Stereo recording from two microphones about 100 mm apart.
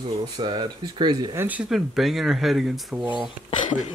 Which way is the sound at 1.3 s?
15° right (ahead or behind).